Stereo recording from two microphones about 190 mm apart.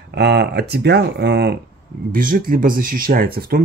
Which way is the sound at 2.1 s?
45° right (ahead or behind).